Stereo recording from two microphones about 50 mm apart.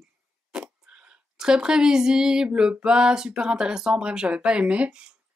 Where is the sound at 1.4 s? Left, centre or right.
Centre.